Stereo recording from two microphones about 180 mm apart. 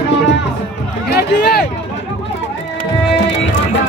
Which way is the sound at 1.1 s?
65° left (ahead or behind).